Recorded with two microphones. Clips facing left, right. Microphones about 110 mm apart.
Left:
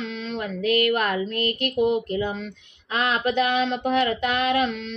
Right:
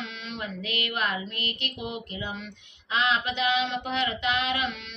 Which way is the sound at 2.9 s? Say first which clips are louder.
Left 4 dB; 45° left (ahead or behind).